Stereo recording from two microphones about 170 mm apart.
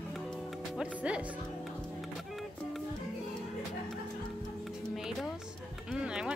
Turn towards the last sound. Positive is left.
turn(degrees=-5)  # may be behind; listen again after turning